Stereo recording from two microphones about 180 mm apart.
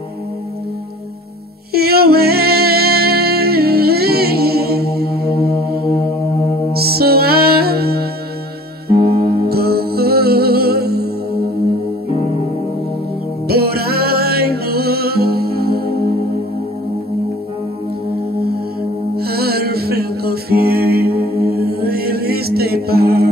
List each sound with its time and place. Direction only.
1.7 s music: 60° right (ahead or behind)
6.7 s music: 60° right (ahead or behind)
13.5 s music: 60° right (ahead or behind)
19.1 s music: 60° right (ahead or behind)